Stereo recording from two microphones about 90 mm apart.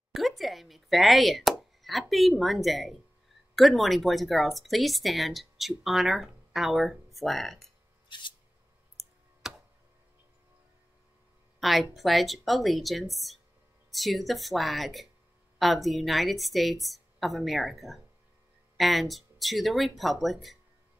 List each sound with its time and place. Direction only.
0.1 s speech: centre (ahead or behind)
8.1 s a sound: 60° left (ahead or behind)
8.9 s clicking: 5° right (ahead or behind)
11.6 s speech: centre (ahead or behind)